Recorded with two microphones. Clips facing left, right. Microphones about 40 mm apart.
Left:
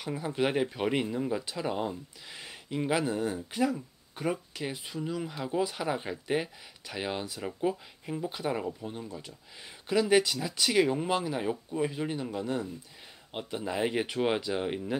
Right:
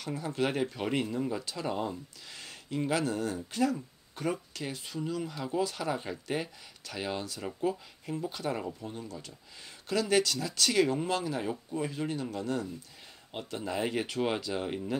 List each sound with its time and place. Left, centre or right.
0.0 s speech: centre